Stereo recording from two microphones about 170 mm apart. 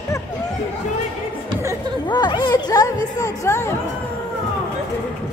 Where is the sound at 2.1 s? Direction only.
25° left (ahead or behind).